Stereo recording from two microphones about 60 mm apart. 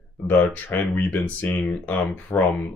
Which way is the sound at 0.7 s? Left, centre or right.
Left.